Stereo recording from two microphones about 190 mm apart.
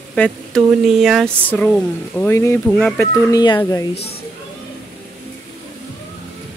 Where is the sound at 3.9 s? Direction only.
60° left (ahead or behind).